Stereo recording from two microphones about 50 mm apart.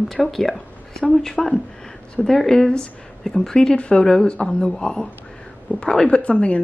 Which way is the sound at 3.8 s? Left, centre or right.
Left.